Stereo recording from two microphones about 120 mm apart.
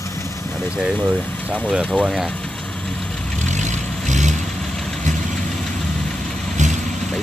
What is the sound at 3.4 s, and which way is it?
Vehicle, 85° right.